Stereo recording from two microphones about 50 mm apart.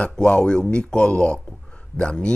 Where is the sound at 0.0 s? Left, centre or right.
Centre.